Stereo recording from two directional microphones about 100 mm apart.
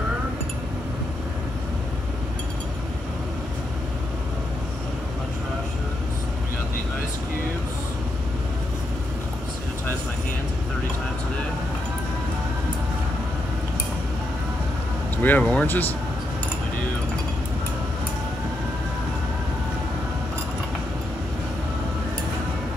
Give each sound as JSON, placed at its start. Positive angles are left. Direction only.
{"t": 15.2, "sound": "speech", "side_deg": 15}